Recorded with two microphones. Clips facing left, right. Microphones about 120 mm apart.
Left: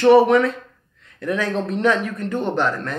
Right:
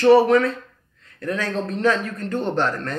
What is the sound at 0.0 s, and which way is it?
A man's voice, 20° left (ahead or behind).